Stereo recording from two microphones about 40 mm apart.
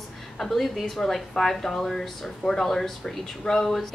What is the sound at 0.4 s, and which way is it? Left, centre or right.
A woman's voice, centre.